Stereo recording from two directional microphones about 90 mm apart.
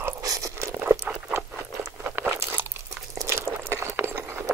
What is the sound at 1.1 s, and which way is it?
Patter, 15° right (ahead or behind).